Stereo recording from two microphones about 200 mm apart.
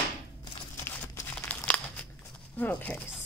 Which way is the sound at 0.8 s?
10° left (ahead or behind).